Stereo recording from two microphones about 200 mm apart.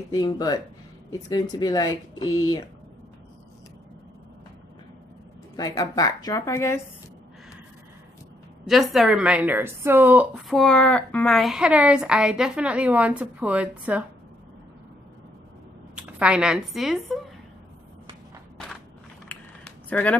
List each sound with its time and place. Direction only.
0.1 s speech: 20° left (ahead or behind)
5.6 s a woman's voice: 20° left (ahead or behind)
8.6 s a woman's voice: centre (ahead or behind)
10.5 s a woman's voice: 5° left (ahead or behind)
15.9 s speech: 5° right (ahead or behind)
19.2 s a sound: 5° left (ahead or behind)